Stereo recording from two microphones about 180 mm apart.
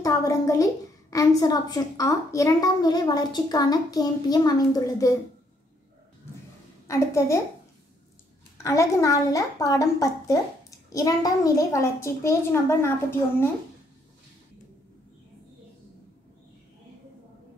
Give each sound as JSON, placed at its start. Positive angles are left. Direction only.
{"t": 0.0, "sound": "a woman's voice", "side_deg": 20}
{"t": 6.9, "sound": "a child's voice", "side_deg": 15}
{"t": 8.6, "sound": "a woman's voice", "side_deg": 15}